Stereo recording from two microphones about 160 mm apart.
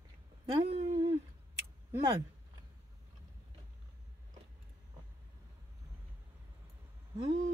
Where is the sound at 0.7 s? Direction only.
40° right (ahead or behind).